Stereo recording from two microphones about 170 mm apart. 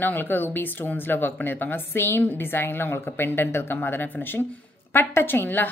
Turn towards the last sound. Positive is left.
turn(degrees=10)  # may be behind; listen again after turning